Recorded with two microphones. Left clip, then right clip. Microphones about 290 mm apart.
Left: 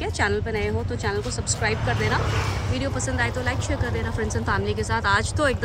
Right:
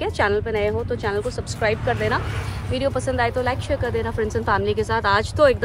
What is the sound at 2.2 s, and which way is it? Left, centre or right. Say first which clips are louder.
Speech: left 4 dB; left.